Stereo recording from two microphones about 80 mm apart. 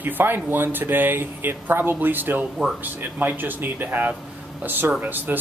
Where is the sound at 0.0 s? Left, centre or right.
Right.